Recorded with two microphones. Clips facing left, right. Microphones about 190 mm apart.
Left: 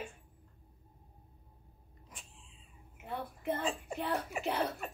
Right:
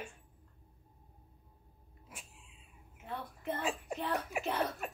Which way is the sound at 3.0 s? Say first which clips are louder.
Left 3 dB; 10° left (ahead or behind).